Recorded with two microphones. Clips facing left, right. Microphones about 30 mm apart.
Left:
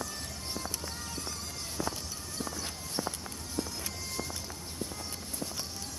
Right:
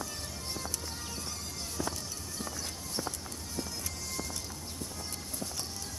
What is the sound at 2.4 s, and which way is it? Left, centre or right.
Run, centre.